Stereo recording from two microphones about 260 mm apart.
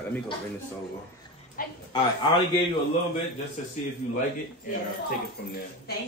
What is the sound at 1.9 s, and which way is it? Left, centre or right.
Speech, centre.